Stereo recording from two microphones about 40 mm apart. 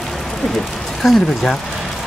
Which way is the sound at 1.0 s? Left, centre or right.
Centre.